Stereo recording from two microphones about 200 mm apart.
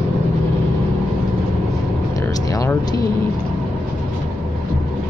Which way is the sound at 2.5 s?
15° left (ahead or behind).